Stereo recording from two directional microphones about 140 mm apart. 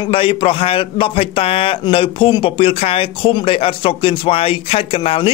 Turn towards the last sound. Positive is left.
turn(degrees=40)  # may be behind; listen again after turning